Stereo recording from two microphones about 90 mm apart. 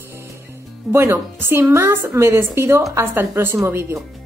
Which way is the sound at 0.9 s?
30° right (ahead or behind).